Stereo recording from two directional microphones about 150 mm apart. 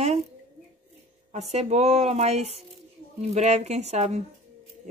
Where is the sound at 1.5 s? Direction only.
45° right (ahead or behind).